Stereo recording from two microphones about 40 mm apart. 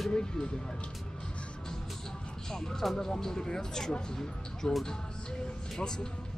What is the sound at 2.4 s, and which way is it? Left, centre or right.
Music, centre.